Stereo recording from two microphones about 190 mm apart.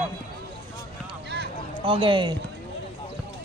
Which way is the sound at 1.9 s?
25° right (ahead or behind).